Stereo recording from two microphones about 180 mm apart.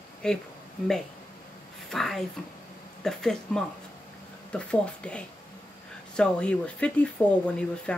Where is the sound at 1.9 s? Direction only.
Centre (ahead or behind).